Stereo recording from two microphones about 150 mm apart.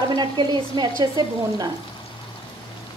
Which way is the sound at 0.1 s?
30° right (ahead or behind).